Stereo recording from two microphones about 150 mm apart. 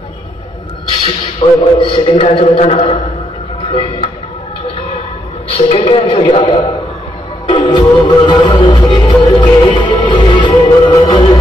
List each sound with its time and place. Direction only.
1.0 s a man's voice: 35° left (ahead or behind)
5.6 s a man's voice: 40° left (ahead or behind)
7.4 s music: 30° left (ahead or behind)